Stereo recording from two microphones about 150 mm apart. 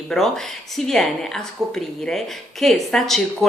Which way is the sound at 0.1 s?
Centre (ahead or behind).